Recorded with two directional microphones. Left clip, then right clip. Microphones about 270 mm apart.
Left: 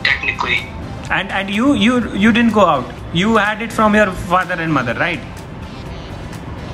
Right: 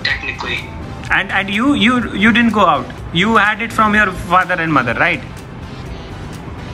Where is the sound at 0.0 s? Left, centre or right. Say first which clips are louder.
Left 3 dB; centre.